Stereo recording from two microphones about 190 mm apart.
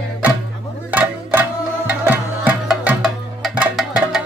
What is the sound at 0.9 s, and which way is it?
Music, 10° right (ahead or behind).